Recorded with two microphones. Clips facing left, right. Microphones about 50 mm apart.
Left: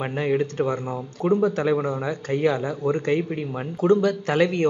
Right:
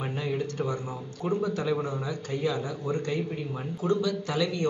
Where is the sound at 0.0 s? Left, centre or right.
Left.